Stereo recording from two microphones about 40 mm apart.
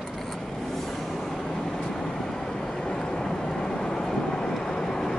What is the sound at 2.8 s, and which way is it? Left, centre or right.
Vehicle, centre.